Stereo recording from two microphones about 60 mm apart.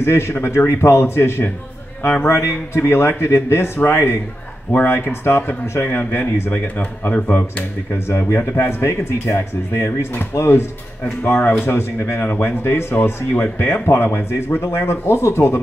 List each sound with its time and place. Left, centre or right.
0.0 s speech: left
6.8 s speech: left
8.1 s speech: left